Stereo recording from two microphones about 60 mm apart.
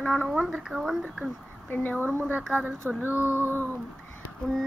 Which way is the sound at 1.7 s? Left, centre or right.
Left.